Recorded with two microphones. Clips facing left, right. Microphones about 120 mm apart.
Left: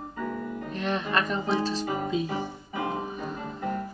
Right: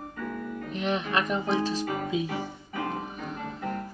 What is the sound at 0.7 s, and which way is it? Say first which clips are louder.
Speech: even; 15° right (ahead or behind).